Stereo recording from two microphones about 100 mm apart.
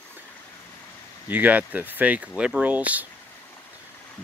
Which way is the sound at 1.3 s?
15° right (ahead or behind).